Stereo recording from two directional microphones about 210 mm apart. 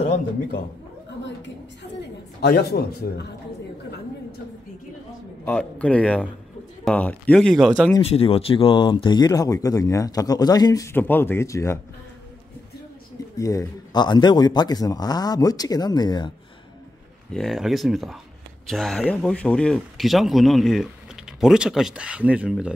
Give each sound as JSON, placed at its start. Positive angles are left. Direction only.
{"t": 1.2, "sound": "a woman's voice", "side_deg": 55}
{"t": 5.4, "sound": "speech", "side_deg": 5}
{"t": 8.0, "sound": "speech", "side_deg": 30}
{"t": 13.4, "sound": "a man's voice", "side_deg": 15}
{"t": 17.3, "sound": "speech", "side_deg": 0}